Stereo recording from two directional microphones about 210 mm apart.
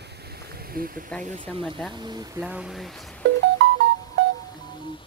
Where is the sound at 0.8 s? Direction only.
45° right (ahead or behind).